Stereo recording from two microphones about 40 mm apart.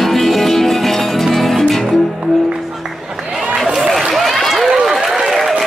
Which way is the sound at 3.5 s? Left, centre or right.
Centre.